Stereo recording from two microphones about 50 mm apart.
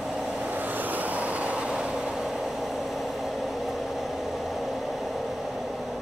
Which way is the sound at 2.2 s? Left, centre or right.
Centre.